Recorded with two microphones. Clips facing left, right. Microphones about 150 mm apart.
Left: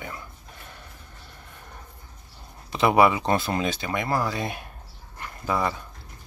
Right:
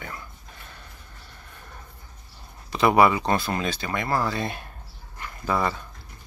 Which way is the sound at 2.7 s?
20° left (ahead or behind).